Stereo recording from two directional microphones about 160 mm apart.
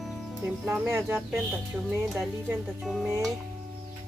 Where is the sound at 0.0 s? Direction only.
Centre (ahead or behind).